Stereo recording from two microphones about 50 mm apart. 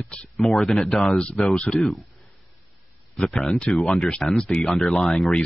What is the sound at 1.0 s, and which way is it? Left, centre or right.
Speech, left.